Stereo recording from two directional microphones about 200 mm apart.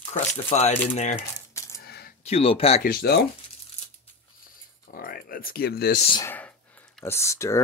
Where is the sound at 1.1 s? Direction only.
15° left (ahead or behind).